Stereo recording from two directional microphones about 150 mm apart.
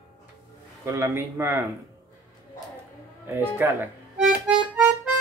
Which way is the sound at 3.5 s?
15° right (ahead or behind).